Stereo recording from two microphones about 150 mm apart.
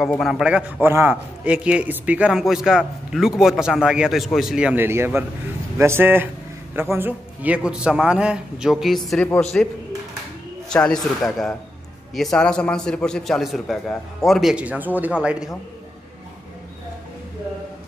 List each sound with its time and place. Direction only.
0.1 s a man's voice: centre (ahead or behind)